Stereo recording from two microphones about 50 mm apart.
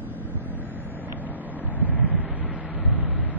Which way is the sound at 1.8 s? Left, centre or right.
Left.